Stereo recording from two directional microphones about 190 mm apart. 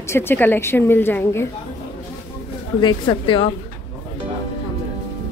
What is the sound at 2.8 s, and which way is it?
Speech, 25° left (ahead or behind).